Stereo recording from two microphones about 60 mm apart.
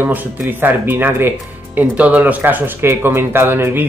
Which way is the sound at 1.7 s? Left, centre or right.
Right.